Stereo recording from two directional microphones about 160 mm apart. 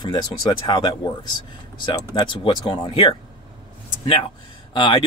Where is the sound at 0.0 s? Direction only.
30° left (ahead or behind).